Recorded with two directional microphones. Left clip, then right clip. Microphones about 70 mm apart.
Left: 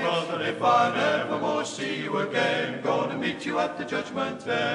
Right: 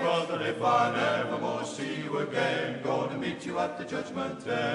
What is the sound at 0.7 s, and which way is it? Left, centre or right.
Mantra, left.